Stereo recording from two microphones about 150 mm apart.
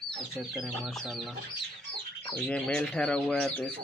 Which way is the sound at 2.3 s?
5° left (ahead or behind).